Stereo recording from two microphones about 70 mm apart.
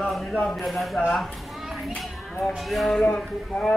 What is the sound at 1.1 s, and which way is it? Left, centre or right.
Children playing, centre.